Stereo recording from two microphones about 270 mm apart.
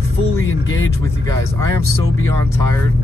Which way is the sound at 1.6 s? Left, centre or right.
Centre.